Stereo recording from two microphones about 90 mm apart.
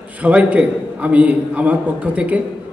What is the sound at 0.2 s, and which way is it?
A man's voice, 15° right (ahead or behind).